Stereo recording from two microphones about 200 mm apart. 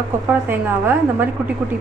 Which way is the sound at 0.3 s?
10° right (ahead or behind).